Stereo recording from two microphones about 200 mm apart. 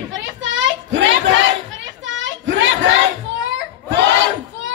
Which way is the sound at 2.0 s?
70° right (ahead or behind).